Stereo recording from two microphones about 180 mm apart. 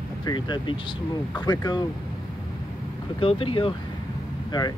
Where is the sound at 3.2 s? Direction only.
30° left (ahead or behind).